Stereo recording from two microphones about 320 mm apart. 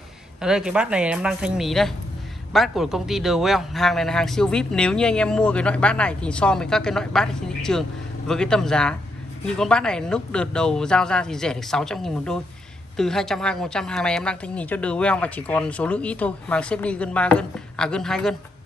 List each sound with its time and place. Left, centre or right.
0.4 s a woman's voice: centre